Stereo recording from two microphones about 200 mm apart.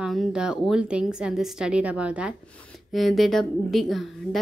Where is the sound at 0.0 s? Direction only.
Centre (ahead or behind).